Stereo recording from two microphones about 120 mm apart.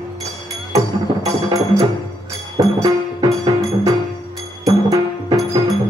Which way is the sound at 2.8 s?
30° right (ahead or behind).